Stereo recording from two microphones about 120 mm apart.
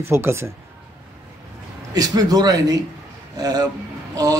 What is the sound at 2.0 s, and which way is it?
Speech, 30° right (ahead or behind).